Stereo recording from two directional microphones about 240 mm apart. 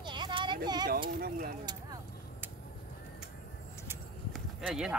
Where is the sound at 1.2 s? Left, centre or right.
Right.